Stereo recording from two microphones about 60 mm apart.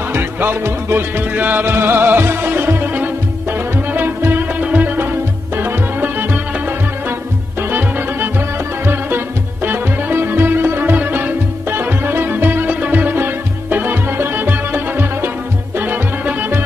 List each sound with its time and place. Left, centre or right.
0.1 s music: right
1.3 s music: right
9.7 s music: right